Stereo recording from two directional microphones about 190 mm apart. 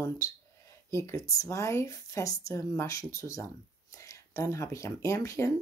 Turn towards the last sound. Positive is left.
turn(degrees=15)  # may be behind; listen again after turning